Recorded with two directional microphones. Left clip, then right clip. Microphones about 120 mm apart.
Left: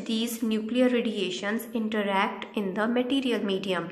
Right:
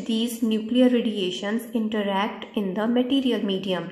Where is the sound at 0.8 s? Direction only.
45° right (ahead or behind).